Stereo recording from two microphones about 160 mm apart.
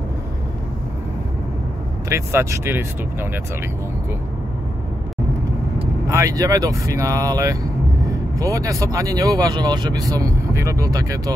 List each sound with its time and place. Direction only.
2.0 s speech: 20° right (ahead or behind)
6.0 s speech: 20° right (ahead or behind)